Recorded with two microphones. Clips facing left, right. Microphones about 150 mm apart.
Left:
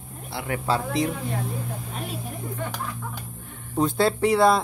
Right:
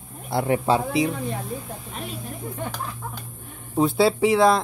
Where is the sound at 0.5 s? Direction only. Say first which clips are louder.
Right 4 dB; 15° right (ahead or behind).